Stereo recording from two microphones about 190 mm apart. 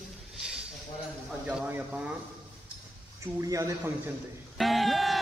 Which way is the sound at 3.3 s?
15° right (ahead or behind).